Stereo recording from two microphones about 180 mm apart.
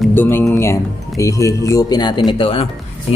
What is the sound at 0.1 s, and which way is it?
Speech, 10° left (ahead or behind).